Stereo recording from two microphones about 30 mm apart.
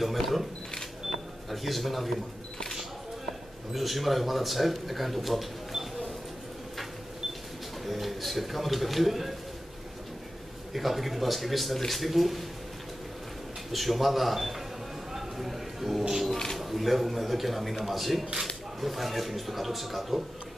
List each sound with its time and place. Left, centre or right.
0.0 s speech: centre
3.7 s speech: centre
7.8 s a man's voice: centre
10.7 s speech: centre
13.7 s speech: centre
15.1 s a sound: centre
16.5 s speech: centre